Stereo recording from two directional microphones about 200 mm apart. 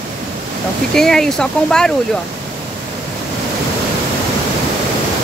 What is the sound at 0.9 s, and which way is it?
Speech, centre (ahead or behind).